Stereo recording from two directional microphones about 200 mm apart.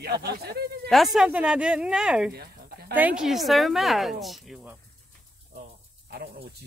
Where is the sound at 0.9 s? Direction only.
Centre (ahead or behind).